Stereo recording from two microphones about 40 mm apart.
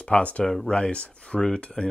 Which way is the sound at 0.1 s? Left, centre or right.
Left.